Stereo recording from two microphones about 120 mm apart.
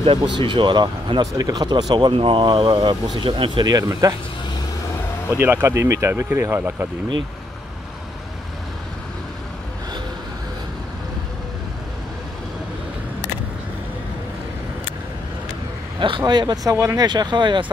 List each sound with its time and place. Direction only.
0.0 s speech: 45° right (ahead or behind); by 4.1 s 30° right (ahead or behind)
5.4 s speech: 20° right (ahead or behind)
16.0 s speech: 40° right (ahead or behind)